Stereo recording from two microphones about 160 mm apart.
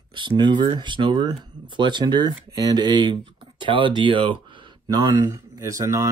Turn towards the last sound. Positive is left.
turn(degrees=-20)  # may be behind; listen again after turning